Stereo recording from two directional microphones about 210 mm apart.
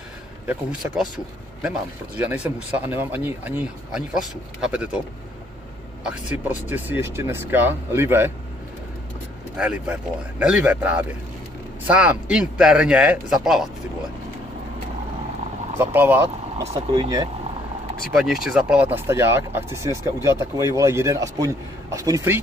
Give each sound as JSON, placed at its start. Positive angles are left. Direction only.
{"t": 0.5, "sound": "speech", "side_deg": -5}
{"t": 6.0, "sound": "speech", "side_deg": -5}
{"t": 9.6, "sound": "speech", "side_deg": -5}
{"t": 15.8, "sound": "speech", "side_deg": -10}
{"t": 16.6, "sound": "speech", "side_deg": -25}
{"t": 18.1, "sound": "speech", "side_deg": 0}